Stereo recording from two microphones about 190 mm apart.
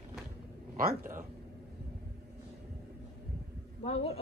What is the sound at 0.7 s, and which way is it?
Speech, 45° right (ahead or behind).